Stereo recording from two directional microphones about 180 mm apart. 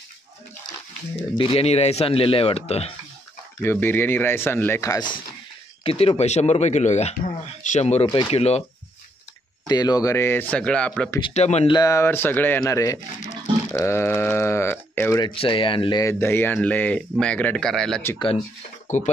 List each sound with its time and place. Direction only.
1.4 s speech: 30° left (ahead or behind)
3.6 s speech: 10° left (ahead or behind)
5.9 s speech: 30° left (ahead or behind)
9.7 s speech: 20° left (ahead or behind); by 11.1 s 5° left (ahead or behind)
11.2 s speech: 35° left (ahead or behind)
11.7 s speech: 20° left (ahead or behind)
15.2 s speech: 30° left (ahead or behind)
16.0 s speech: 15° left (ahead or behind)
18.9 s speech: 45° left (ahead or behind)